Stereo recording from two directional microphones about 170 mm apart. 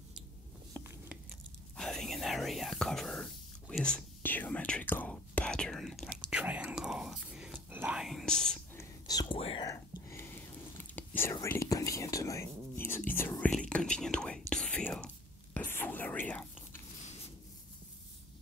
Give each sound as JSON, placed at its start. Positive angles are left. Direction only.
{"t": 1.8, "sound": "whispering", "side_deg": 0}
{"t": 8.7, "sound": "whispering", "side_deg": 20}
{"t": 9.4, "sound": "whispering", "side_deg": 35}
{"t": 9.7, "sound": "whispering", "side_deg": 20}